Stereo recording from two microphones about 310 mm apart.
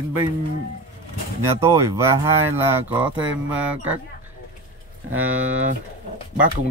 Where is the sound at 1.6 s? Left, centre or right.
Centre.